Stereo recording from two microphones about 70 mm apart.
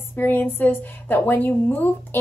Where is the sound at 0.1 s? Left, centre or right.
Left.